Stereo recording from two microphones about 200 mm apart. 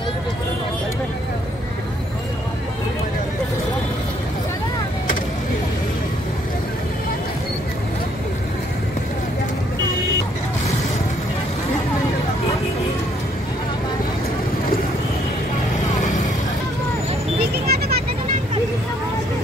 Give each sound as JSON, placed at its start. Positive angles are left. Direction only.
{"t": 17.6, "sound": "vehicle", "side_deg": -50}